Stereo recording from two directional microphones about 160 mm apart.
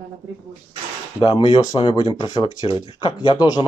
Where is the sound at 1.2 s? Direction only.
30° left (ahead or behind).